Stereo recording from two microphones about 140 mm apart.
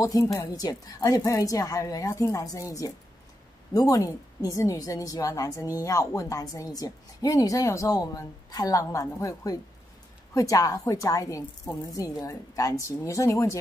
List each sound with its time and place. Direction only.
0.0 s a woman's voice: 25° left (ahead or behind)